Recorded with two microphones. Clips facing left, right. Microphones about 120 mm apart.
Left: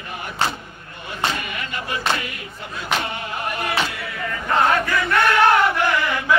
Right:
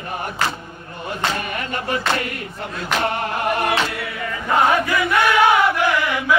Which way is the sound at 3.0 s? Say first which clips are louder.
Right 6 dB; 60° right (ahead or behind).